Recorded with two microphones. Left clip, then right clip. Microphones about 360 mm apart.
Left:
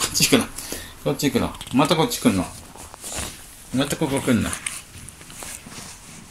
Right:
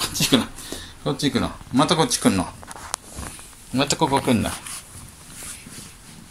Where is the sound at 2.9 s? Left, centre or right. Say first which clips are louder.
Right 10 dB; right.